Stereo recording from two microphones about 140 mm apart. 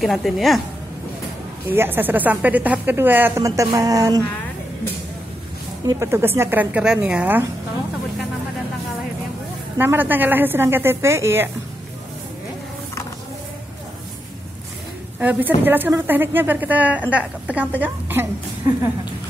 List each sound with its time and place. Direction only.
0.0 s a woman's voice: centre (ahead or behind)
1.7 s a woman's voice: 15° right (ahead or behind)
5.9 s a woman's voice: 20° right (ahead or behind)
9.8 s a woman's voice: 15° right (ahead or behind)
15.1 s a woman's voice: 10° right (ahead or behind)